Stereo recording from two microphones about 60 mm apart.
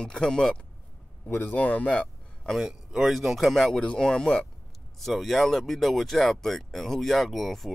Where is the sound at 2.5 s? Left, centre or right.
Centre.